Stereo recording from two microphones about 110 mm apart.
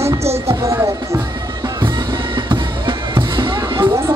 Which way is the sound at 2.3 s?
45° right (ahead or behind).